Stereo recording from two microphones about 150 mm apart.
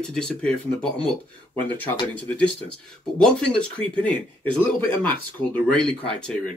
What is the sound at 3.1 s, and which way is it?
Speech, 5° left (ahead or behind).